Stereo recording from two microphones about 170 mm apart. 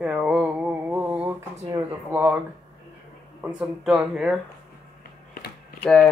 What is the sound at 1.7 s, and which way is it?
Speech, 20° right (ahead or behind).